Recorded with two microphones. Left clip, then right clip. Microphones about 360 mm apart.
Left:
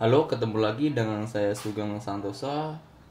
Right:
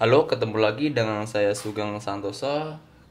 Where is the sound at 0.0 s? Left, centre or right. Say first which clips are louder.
Right 4 dB; right.